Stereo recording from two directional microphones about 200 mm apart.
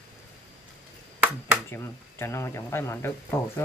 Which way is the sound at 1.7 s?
10° left (ahead or behind).